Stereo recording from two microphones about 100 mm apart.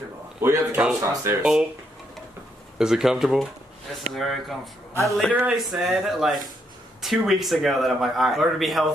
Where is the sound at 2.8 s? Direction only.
5° right (ahead or behind).